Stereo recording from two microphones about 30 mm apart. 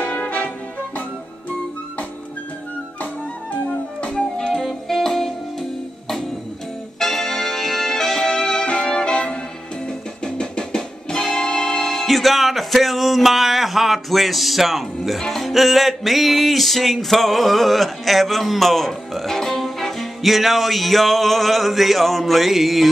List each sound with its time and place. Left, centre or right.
0.0 s brass instrument: left
4.1 s music: left
4.8 s music: centre; by 9.4 s left
10.4 s music: left
11.8 s music: centre
15.1 s music: centre
20.0 s music: centre